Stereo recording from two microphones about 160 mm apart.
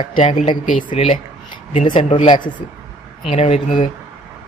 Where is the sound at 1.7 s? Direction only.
45° left (ahead or behind).